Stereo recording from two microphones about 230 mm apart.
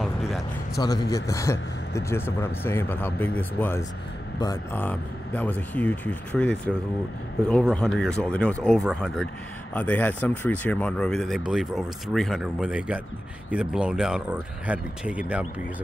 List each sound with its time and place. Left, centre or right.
0.0 s music: centre
0.7 s a man's voice: centre